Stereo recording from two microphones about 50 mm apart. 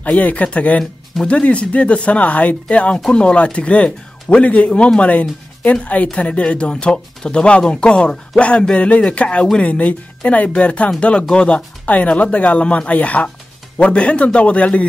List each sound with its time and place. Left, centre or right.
0.0 s speech: left